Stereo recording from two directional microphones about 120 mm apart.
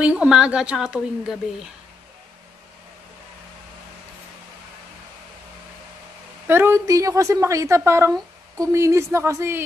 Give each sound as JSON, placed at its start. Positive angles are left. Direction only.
{"t": 0.0, "sound": "a woman's voice", "side_deg": -10}
{"t": 6.4, "sound": "a woman's voice", "side_deg": -20}